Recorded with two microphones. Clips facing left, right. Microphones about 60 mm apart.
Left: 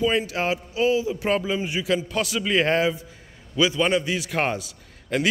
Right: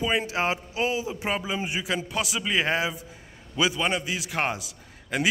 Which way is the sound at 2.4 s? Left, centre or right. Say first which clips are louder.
Left 5 dB; centre.